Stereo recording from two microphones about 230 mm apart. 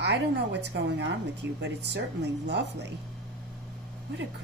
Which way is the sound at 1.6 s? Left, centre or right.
Right.